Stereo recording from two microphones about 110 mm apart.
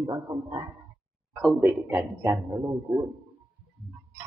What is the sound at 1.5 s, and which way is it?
Speech, 20° right (ahead or behind).